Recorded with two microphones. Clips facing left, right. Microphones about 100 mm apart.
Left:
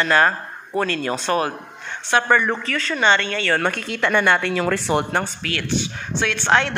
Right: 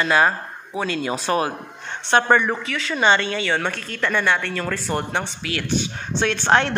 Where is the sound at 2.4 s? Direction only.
5° right (ahead or behind).